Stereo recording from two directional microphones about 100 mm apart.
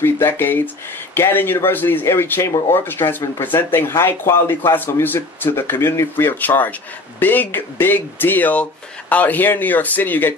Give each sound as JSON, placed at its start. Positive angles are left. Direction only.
{"t": 0.0, "sound": "speech", "side_deg": 20}